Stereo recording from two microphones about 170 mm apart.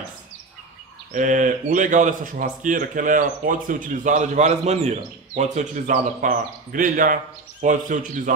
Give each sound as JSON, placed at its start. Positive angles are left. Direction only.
{"t": 1.1, "sound": "speech", "side_deg": -50}